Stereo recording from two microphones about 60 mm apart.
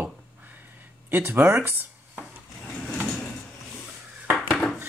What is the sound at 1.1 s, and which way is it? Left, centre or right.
Speech, right.